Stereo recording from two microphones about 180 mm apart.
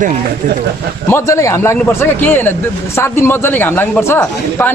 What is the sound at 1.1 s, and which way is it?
A man's voice, 15° left (ahead or behind).